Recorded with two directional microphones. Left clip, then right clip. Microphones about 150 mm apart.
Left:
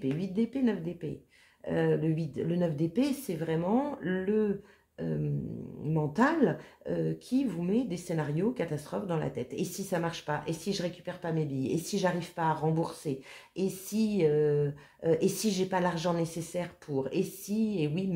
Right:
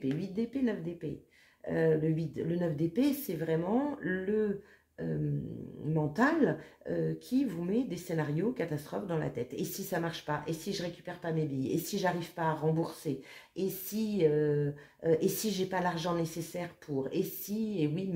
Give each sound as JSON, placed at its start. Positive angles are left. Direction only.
{"t": 0.0, "sound": "speech", "side_deg": 40}
{"t": 5.9, "sound": "speech", "side_deg": 30}